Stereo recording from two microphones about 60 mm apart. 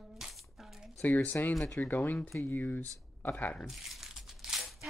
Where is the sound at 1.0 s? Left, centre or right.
Left.